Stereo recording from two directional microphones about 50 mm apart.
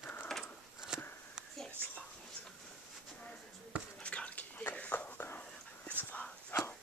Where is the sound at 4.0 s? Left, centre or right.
Left.